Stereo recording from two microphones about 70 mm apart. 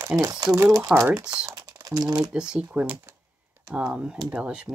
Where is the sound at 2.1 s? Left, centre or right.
Centre.